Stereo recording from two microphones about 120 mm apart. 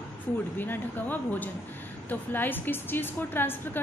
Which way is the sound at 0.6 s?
15° left (ahead or behind).